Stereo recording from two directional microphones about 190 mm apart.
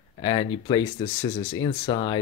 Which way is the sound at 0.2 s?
25° left (ahead or behind).